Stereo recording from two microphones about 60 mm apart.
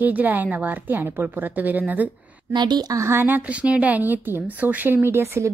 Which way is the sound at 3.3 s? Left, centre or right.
Right.